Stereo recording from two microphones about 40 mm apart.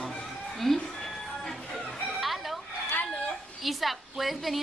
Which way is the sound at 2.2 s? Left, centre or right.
Centre.